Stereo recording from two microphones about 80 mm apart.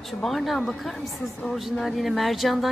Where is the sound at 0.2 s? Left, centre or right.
Centre.